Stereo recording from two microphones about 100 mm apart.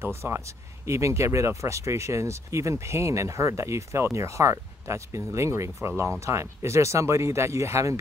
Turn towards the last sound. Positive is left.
turn(degrees=-30)  # may be behind; listen again after turning